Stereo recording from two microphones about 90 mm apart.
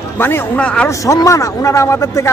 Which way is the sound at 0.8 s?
35° left (ahead or behind).